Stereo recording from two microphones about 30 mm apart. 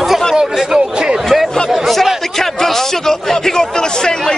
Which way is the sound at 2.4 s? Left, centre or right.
Centre.